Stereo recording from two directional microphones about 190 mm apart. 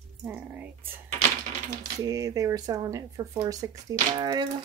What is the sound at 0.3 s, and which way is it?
Speech, 10° right (ahead or behind).